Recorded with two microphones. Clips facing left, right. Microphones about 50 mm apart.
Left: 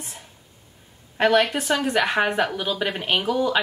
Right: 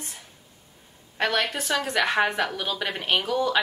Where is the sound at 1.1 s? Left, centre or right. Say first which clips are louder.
Left 6 dB; centre.